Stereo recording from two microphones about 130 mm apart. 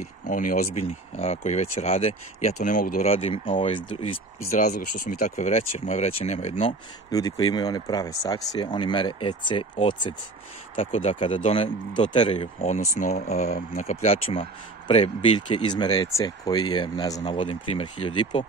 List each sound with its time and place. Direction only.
0.0 s speech: 90° left; by 2.5 s 50° left (ahead or behind)
2.6 s speech: 85° left
3.1 s speech: 45° left (ahead or behind)
4.5 s speech: 85° left; by 6.7 s 50° left (ahead or behind)
7.1 s speech: 30° left (ahead or behind)
13.0 s speech: 65° left (ahead or behind); by 18.4 s 40° left (ahead or behind)